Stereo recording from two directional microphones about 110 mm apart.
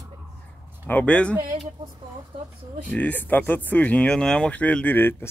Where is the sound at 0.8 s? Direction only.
15° left (ahead or behind).